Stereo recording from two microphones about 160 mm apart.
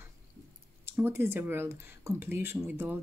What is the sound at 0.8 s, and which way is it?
Speech, 15° right (ahead or behind).